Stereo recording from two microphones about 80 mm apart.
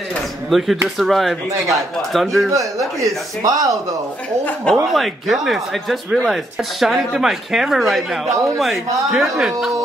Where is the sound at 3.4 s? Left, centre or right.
Right.